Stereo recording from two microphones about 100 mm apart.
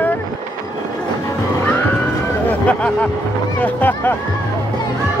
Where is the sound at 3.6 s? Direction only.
15° left (ahead or behind).